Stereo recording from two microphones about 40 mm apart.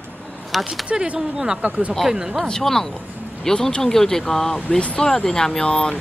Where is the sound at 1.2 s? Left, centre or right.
Centre.